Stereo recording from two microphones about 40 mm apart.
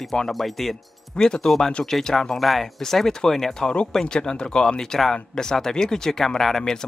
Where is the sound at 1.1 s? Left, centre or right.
Centre.